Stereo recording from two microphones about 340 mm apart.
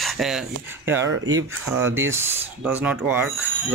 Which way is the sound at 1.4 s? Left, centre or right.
Centre.